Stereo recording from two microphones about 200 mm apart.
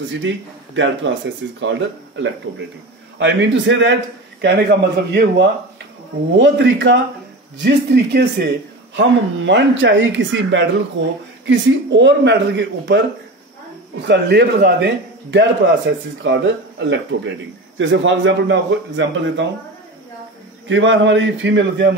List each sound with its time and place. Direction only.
0.2 s a man's voice: 65° right (ahead or behind)
14.0 s speech: 60° right (ahead or behind)
20.6 s a man's voice: 65° right (ahead or behind)